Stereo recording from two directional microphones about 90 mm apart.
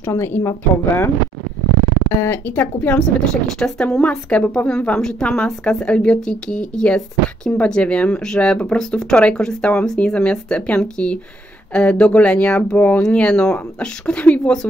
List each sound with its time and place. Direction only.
0.0 s speech: 30° left (ahead or behind)
2.2 s speech: 25° left (ahead or behind)
3.5 s speech: 5° left (ahead or behind)